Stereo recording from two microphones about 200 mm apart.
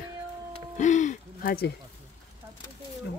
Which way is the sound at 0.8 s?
35° left (ahead or behind).